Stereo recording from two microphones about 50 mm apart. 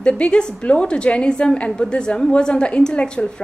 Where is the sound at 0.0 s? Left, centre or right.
Left.